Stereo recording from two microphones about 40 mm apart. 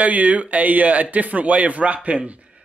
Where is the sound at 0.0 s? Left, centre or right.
Right.